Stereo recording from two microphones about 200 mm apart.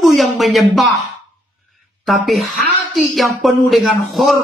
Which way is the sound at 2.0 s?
Centre (ahead or behind).